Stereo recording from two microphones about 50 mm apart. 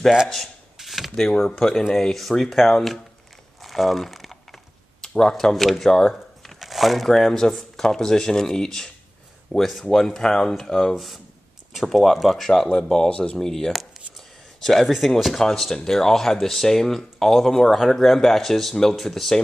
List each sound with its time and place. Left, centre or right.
0.7 s a sound: centre
1.1 s speech: centre
3.6 s crumpling: centre
5.0 s speech: centre
6.4 s crumpling: centre
7.1 s speech: centre
9.5 s speech: centre
12.7 s speech: centre